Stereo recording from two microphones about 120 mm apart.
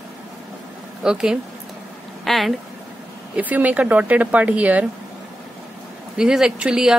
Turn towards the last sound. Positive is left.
turn(degrees=-5)  # may be behind; listen again after turning